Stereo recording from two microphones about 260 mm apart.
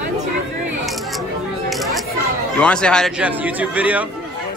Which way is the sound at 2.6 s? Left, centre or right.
Centre.